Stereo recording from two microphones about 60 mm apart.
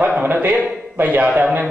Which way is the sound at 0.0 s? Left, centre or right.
Right.